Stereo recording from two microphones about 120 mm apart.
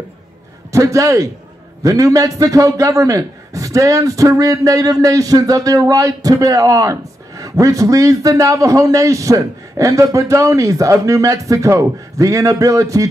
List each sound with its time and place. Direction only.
0.7 s a man's voice: 25° right (ahead or behind)